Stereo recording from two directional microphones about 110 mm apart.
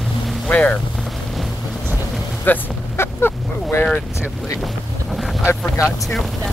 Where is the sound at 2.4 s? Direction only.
20° left (ahead or behind).